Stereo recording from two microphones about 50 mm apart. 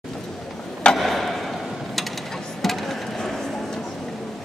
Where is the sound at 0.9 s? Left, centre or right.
Centre.